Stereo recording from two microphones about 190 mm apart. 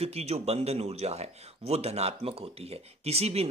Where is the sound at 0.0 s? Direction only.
35° right (ahead or behind).